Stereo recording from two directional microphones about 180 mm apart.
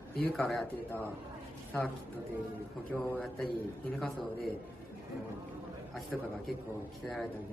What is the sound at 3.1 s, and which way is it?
A man's voice, centre (ahead or behind).